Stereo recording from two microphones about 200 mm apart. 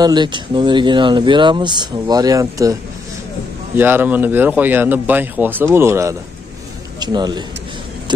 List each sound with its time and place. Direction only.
0.0 s speech: 20° right (ahead or behind)